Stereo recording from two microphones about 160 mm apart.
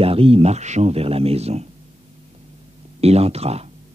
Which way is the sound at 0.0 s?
35° right (ahead or behind).